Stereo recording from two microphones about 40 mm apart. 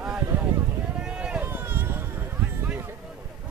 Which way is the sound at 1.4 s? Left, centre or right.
Right.